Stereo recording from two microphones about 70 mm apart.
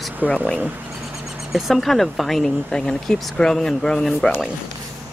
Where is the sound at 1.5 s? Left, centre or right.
Centre.